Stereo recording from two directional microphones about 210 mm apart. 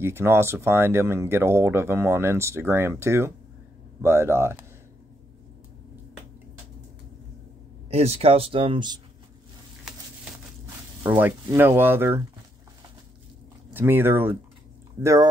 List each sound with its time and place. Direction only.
0.0 s speech: 10° right (ahead or behind)
7.9 s speech: 30° right (ahead or behind)
11.0 s speech: 10° right (ahead or behind)
13.7 s speech: 10° right (ahead or behind)